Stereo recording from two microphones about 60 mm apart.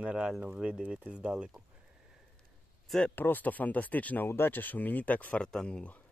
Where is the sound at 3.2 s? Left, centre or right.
Left.